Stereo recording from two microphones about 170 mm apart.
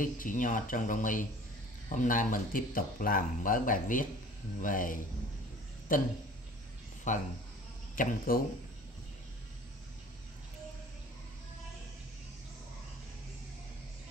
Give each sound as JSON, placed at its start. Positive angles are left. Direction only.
{"t": 0.0, "sound": "speech", "side_deg": 50}
{"t": 7.1, "sound": "speech", "side_deg": 45}